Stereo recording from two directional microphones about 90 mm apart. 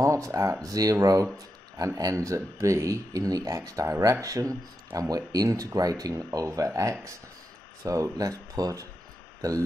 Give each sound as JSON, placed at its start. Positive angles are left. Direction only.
{"t": 0.0, "sound": "speech", "side_deg": -40}